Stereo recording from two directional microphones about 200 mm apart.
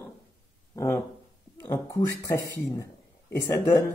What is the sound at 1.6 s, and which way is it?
Speech, 15° left (ahead or behind).